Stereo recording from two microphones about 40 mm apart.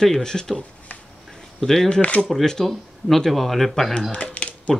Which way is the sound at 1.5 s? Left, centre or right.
Centre.